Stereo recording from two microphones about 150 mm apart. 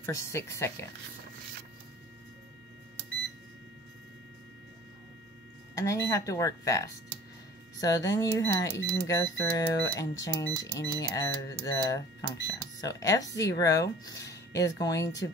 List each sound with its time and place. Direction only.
0.0 s speech: 20° left (ahead or behind)
5.8 s speech: 20° left (ahead or behind)